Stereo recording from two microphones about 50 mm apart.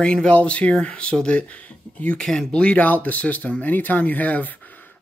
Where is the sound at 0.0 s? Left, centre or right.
Centre.